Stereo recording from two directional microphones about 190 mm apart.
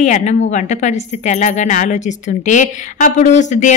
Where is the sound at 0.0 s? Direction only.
40° left (ahead or behind).